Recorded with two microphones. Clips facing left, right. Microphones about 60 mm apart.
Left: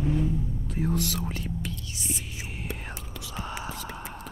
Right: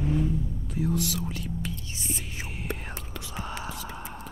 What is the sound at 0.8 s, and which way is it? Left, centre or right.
Whispering, left.